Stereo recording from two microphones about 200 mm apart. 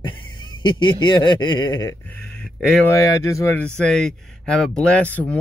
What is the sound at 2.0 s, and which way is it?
Speech, 5° left (ahead or behind).